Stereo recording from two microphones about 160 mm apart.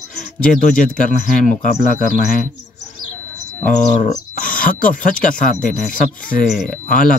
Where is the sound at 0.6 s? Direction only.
55° left (ahead or behind).